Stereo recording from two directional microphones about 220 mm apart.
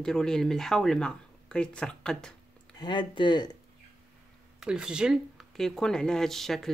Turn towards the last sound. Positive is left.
turn(degrees=0)  # may be behind; listen again after turning